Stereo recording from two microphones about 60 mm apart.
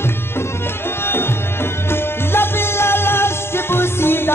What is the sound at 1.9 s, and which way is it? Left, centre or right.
Music, left.